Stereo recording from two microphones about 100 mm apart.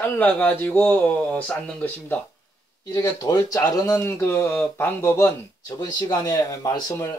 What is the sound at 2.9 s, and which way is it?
Speech, 35° left (ahead or behind).